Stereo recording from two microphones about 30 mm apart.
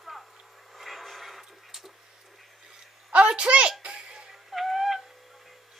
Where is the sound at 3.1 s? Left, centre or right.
Right.